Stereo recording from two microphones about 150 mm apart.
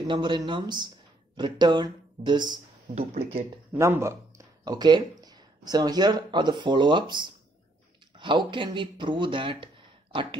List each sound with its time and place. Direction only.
0.1 s speech: 30° right (ahead or behind)
2.9 s speech: 50° right (ahead or behind)
3.7 s speech: 15° right (ahead or behind)
4.6 s speech: 30° right (ahead or behind)